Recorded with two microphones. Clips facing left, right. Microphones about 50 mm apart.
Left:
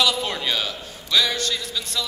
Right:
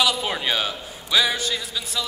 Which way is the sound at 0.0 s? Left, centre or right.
Centre.